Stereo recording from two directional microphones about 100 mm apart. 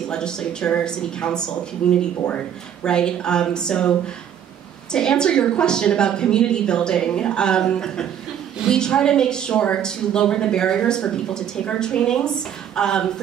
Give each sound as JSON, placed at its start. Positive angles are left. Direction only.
{"t": 0.1, "sound": "a woman's voice", "side_deg": 10}
{"t": 4.9, "sound": "a woman's voice", "side_deg": 5}